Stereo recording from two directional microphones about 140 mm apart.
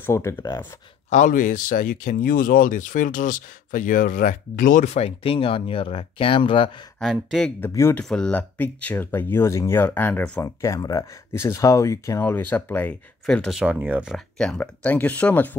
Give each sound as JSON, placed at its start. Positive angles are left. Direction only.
{"t": 0.0, "sound": "speech", "side_deg": 20}
{"t": 1.1, "sound": "speech", "side_deg": 70}
{"t": 7.0, "sound": "speech", "side_deg": 0}
{"t": 7.6, "sound": "speech", "side_deg": 15}
{"t": 8.0, "sound": "speech", "side_deg": 5}
{"t": 10.4, "sound": "speech", "side_deg": 20}
{"t": 14.1, "sound": "speech", "side_deg": 5}